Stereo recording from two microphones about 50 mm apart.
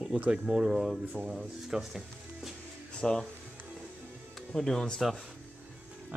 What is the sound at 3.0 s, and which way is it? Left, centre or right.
Speech, centre.